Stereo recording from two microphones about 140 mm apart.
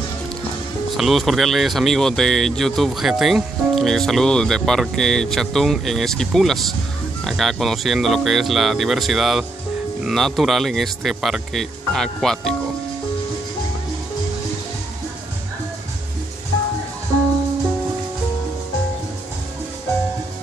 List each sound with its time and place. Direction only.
0.9 s speech: centre (ahead or behind)